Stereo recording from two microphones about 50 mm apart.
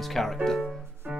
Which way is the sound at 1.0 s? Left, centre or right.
Right.